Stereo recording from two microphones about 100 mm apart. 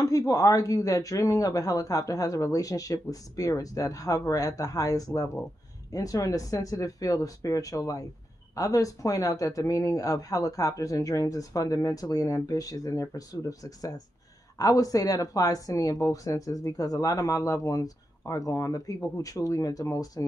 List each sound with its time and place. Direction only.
0.0 s speech: 35° left (ahead or behind)